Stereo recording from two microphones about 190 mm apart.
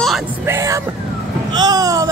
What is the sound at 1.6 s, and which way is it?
Speech, 20° right (ahead or behind).